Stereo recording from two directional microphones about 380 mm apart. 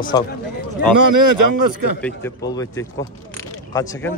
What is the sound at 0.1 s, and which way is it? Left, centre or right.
Speech, centre.